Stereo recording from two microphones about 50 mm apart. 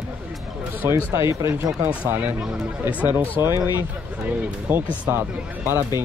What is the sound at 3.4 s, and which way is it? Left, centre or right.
Speech, right.